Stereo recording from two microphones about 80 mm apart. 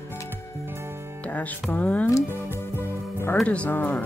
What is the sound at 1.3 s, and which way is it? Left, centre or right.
Music, centre.